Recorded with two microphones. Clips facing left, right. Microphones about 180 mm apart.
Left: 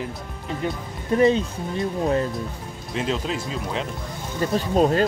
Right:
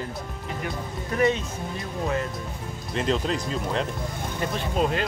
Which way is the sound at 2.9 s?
Centre (ahead or behind).